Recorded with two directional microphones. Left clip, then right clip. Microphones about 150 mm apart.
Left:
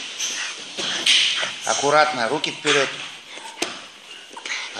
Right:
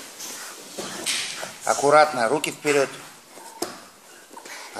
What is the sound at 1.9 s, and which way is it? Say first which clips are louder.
Speech: right 1 dB; 30° right (ahead or behind).